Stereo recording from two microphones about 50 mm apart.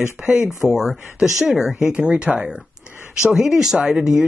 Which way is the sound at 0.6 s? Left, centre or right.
Centre.